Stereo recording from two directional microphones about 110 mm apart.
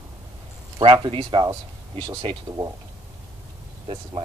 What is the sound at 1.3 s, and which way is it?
Speech, 50° right (ahead or behind).